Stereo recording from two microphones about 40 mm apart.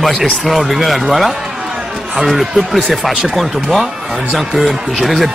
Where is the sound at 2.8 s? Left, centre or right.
Centre.